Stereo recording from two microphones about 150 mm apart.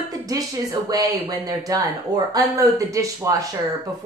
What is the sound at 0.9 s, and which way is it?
Speech, 25° right (ahead or behind).